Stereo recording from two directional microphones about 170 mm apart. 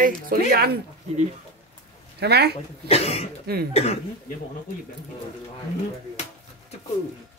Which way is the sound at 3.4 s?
65° right (ahead or behind).